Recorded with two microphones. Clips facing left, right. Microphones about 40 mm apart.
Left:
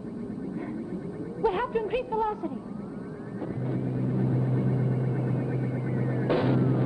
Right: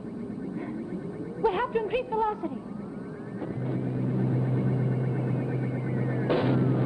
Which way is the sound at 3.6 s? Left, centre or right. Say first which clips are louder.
Even; centre.